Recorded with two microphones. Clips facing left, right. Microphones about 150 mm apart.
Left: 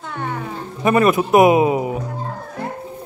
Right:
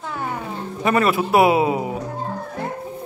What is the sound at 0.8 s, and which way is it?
A man's voice, 15° left (ahead or behind).